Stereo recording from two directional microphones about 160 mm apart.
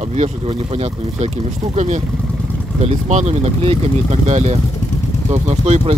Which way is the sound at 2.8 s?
45° right (ahead or behind).